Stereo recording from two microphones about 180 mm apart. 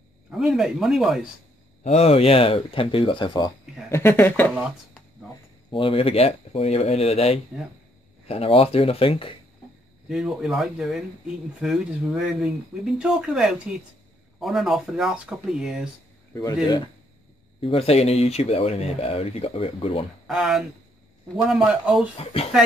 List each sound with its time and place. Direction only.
0.3 s speech: centre (ahead or behind)
1.8 s speech: 35° left (ahead or behind)
3.9 s speech: 15° left (ahead or behind)
5.7 s speech: 30° left (ahead or behind)
10.0 s speech: centre (ahead or behind)
16.6 s speech: 25° left (ahead or behind)
20.2 s speech: centre (ahead or behind)
22.2 s speech: 35° left (ahead or behind)